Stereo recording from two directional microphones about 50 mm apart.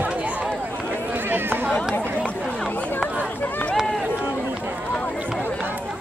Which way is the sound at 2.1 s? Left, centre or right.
Left.